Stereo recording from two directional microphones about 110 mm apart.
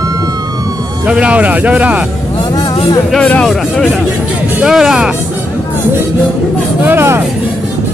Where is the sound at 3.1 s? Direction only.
10° left (ahead or behind).